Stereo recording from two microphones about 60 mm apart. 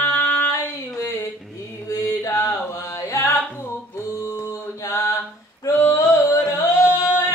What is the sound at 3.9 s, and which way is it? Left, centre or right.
Mantra, left.